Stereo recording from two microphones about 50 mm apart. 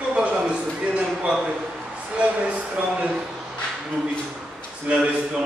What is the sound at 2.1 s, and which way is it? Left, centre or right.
Speech, right.